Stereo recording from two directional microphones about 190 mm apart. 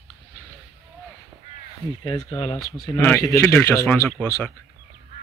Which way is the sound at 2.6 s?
55° left (ahead or behind).